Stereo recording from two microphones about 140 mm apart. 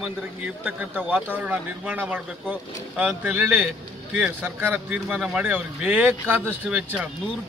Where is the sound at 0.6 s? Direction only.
15° right (ahead or behind).